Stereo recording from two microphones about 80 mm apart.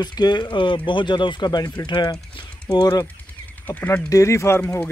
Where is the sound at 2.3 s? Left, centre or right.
Left.